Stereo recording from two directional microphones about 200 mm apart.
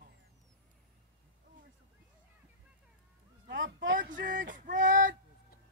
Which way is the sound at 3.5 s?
65° right (ahead or behind).